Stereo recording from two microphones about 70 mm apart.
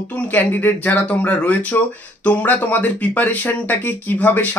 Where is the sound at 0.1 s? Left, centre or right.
Left.